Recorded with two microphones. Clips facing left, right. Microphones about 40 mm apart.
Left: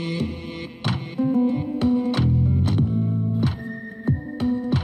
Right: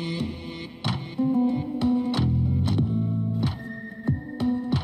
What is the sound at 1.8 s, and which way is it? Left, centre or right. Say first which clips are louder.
Music: left 3 dB; left.